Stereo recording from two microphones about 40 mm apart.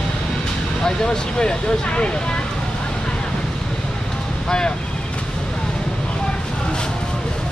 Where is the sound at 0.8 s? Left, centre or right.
Left.